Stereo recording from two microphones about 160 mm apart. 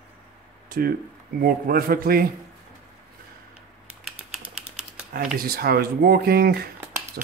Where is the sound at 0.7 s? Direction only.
65° right (ahead or behind).